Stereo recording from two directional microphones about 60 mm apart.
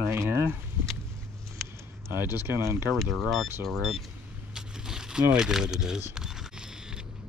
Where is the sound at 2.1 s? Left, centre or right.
Right.